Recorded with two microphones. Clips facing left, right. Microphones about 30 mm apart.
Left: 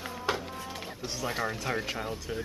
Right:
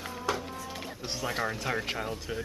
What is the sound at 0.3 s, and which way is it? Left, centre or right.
Music, left.